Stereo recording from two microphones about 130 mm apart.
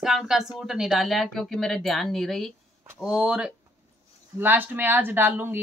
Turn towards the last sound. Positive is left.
turn(degrees=-15)  # may be behind; listen again after turning